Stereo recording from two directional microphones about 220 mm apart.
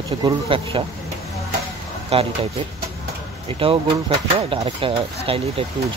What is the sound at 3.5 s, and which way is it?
Speech, 25° right (ahead or behind).